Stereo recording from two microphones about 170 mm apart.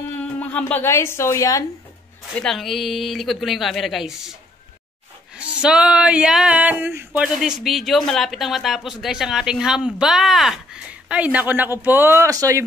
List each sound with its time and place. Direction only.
0.2 s a woman's voice: 10° left (ahead or behind)
2.3 s speech: centre (ahead or behind); by 7.1 s 15° right (ahead or behind)
7.2 s speech: 5° right (ahead or behind); by 12.6 s 20° right (ahead or behind)